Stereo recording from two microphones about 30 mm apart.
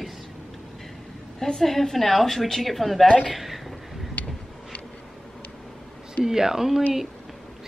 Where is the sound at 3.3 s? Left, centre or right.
Centre.